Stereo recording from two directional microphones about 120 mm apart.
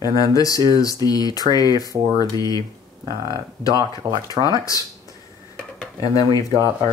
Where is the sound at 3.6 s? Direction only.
30° left (ahead or behind).